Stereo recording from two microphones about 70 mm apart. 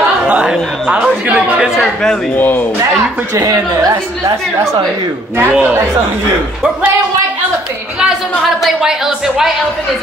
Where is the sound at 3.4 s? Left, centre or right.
Right.